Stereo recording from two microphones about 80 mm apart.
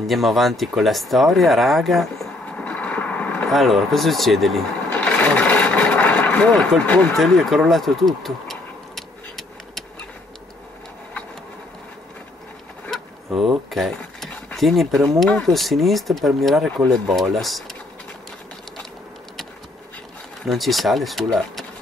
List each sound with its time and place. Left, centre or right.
0.0 s speech: centre
2.4 s vehicle: centre
3.4 s speech: centre
4.9 s filing: centre
5.9 s vehicle: centre
13.3 s speech: centre
20.4 s speech: centre